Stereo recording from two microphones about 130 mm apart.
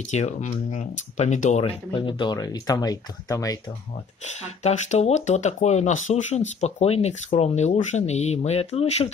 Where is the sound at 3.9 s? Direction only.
60° left (ahead or behind).